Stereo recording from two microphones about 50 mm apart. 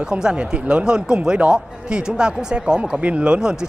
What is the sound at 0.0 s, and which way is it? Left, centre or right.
Speech, centre.